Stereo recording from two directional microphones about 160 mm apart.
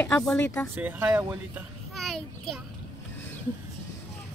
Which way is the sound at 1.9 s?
Centre (ahead or behind).